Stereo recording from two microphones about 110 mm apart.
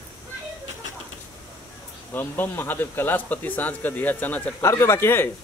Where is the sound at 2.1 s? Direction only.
20° left (ahead or behind).